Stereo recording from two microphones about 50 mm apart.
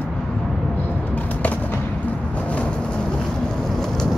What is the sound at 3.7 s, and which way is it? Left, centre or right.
Vehicle, centre.